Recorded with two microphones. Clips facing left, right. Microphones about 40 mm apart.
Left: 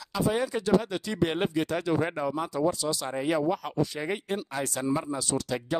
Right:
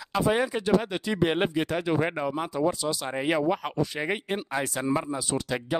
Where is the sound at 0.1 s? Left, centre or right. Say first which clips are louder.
Right 3 dB; right.